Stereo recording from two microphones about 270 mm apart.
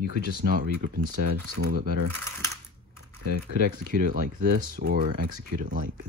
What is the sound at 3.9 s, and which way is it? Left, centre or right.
Speech, right.